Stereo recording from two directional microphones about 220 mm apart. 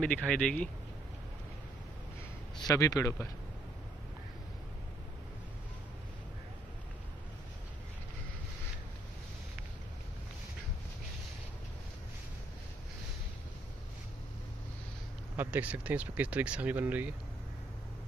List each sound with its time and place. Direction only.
0.0 s speech: 5° left (ahead or behind)
2.6 s speech: 15° left (ahead or behind)
15.3 s speech: 5° right (ahead or behind)